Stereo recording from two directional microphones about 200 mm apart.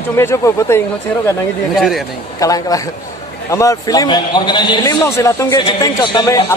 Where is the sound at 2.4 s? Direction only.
15° left (ahead or behind).